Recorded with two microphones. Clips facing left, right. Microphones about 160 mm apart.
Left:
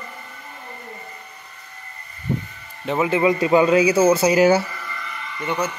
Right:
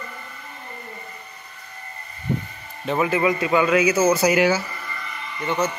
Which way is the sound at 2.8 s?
15° left (ahead or behind).